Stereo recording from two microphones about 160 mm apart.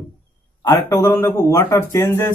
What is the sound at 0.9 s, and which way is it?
A man's voice, 20° left (ahead or behind).